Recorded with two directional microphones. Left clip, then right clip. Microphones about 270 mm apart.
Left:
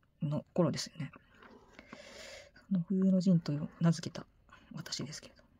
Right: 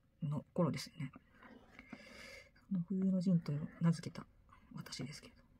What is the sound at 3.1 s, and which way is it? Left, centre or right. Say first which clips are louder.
Speech: left 6 dB; left.